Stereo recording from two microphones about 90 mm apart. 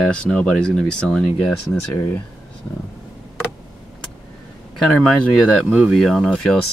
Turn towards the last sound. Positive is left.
turn(degrees=5)  # may be behind; listen again after turning